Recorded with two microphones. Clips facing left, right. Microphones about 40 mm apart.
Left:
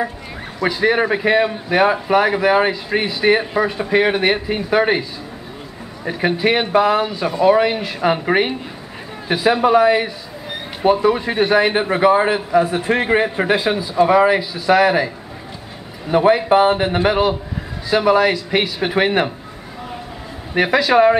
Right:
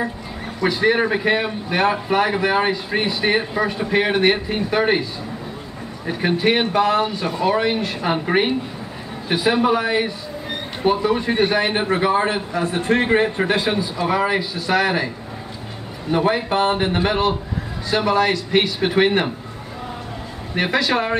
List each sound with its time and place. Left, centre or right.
0.6 s a man's voice: centre
6.0 s a man's voice: centre
16.1 s a man's voice: centre
20.5 s a man's voice: centre